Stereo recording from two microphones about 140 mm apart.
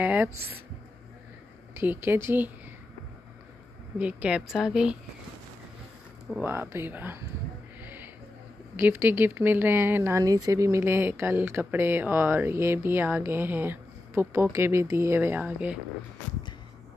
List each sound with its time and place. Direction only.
0.0 s speech: 10° right (ahead or behind)
1.8 s speech: 15° right (ahead or behind)
4.0 s a woman's voice: 10° right (ahead or behind)
6.4 s speech: 15° right (ahead or behind)
7.8 s a sound: 15° right (ahead or behind)
8.7 s speech: 15° right (ahead or behind)